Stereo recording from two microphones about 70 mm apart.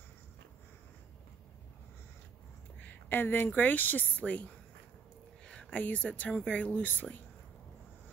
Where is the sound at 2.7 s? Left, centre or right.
Left.